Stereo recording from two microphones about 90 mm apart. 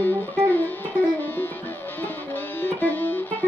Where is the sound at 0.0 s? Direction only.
20° left (ahead or behind).